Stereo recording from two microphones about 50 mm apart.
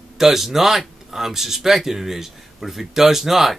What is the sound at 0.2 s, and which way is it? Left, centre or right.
Speech, centre.